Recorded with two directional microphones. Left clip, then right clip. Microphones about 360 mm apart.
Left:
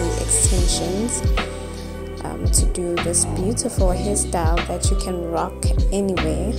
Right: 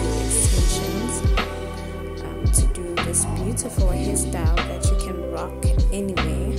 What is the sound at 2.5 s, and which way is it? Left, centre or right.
Speech, centre.